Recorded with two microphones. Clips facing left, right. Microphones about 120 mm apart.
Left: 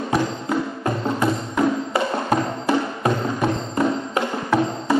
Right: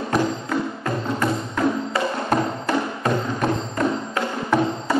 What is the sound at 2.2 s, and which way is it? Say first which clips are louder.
Music: left 1 dB; 10° left (ahead or behind).